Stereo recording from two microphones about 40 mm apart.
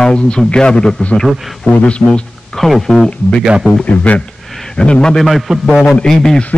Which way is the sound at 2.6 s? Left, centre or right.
Centre.